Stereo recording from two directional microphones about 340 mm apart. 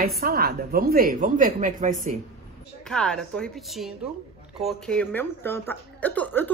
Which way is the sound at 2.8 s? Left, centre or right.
Centre.